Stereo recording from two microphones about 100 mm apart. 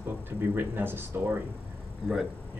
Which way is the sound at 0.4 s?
20° right (ahead or behind).